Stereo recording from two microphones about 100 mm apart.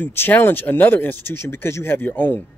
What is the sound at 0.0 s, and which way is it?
Speech, 20° left (ahead or behind).